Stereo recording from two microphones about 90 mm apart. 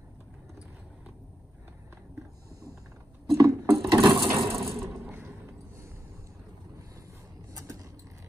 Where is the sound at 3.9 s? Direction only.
55° right (ahead or behind).